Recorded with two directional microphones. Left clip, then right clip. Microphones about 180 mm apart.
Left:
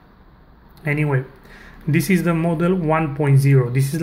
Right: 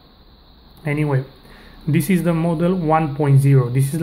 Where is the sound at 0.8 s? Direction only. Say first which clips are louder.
Even; 5° right (ahead or behind).